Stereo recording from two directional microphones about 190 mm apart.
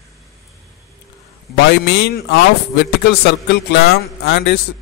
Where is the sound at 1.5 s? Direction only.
60° left (ahead or behind).